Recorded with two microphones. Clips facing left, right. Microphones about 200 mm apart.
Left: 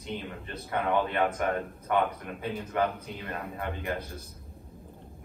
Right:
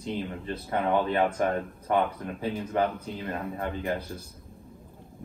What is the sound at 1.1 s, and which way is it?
Speech, 30° right (ahead or behind).